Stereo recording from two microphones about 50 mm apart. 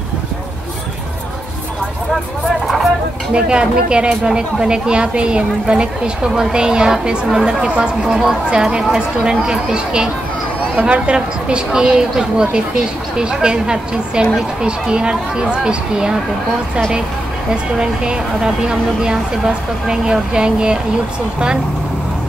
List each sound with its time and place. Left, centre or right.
3.3 s a woman's voice: centre
17.7 s a woman's voice: centre